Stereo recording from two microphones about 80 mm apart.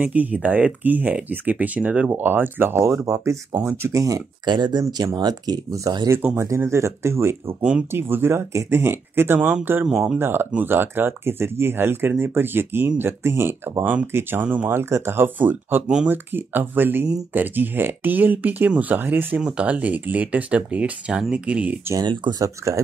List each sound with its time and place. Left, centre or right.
0.0 s speech: centre; by 4.2 s right
4.5 s speech: right
4.9 s speech: right
5.9 s speech: right
6.3 s speech: right
9.8 s speech: centre
10.1 s speech: right
14.8 s speech: right
19.4 s speech: centre
22.0 s speech: right
22.3 s speech: right